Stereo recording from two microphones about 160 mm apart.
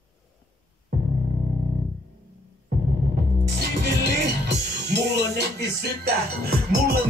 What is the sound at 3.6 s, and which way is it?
Music, 90° right.